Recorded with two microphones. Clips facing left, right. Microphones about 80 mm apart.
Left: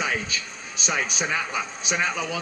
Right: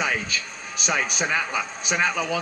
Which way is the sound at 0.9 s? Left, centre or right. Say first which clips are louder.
Right 2 dB; centre.